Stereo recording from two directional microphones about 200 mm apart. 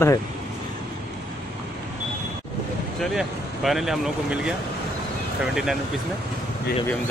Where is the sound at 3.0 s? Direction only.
Centre (ahead or behind).